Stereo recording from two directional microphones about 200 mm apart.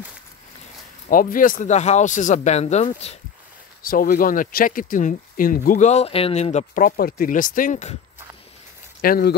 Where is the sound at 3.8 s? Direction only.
45° left (ahead or behind).